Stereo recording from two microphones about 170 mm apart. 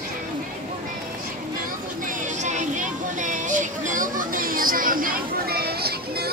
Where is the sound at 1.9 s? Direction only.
50° right (ahead or behind); by 6.3 s 65° right (ahead or behind).